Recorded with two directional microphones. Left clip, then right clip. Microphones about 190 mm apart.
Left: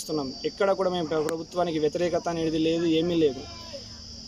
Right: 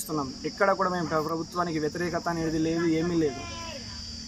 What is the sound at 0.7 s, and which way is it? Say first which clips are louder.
Speech: left 1 dB; 5° right (ahead or behind).